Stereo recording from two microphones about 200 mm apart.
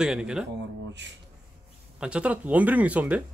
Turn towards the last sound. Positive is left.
turn(degrees=-5)  # may be behind; listen again after turning